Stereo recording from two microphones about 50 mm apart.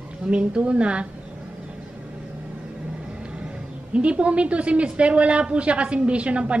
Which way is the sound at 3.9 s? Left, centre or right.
Right.